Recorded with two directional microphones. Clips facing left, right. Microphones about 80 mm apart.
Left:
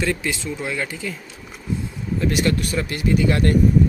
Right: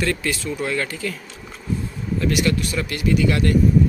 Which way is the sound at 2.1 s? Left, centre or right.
Left.